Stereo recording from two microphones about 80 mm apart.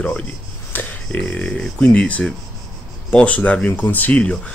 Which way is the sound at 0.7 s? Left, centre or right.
Left.